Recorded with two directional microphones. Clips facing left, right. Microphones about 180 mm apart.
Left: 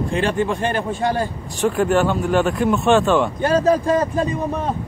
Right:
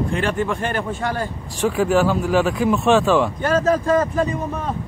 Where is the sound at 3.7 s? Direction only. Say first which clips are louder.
Left 1 dB; 35° left (ahead or behind).